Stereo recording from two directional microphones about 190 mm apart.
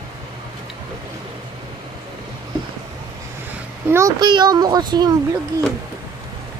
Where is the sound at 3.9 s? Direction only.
15° right (ahead or behind).